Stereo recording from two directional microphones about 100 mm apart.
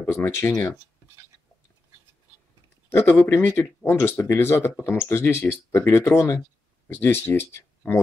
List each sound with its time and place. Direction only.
0.0 s speech: 20° left (ahead or behind)
2.9 s speech: 25° left (ahead or behind)